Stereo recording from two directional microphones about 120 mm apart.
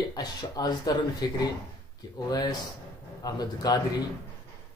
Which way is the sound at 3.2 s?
35° left (ahead or behind).